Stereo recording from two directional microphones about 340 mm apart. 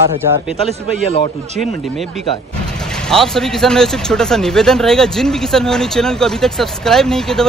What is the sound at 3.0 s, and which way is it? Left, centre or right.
A man's voice, centre.